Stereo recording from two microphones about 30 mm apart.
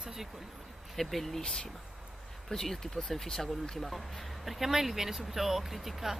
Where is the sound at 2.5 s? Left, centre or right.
Centre.